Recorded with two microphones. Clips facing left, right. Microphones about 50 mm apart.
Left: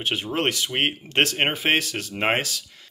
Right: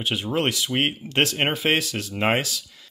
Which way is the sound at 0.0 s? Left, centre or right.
Left.